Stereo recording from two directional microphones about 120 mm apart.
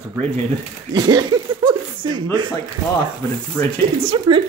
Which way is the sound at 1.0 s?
35° right (ahead or behind).